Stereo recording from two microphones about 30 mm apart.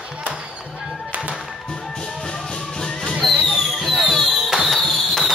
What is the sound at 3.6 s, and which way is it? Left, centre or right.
Fireworks, centre.